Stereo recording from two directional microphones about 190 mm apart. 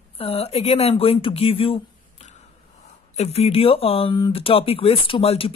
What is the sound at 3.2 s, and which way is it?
Speech, 35° left (ahead or behind).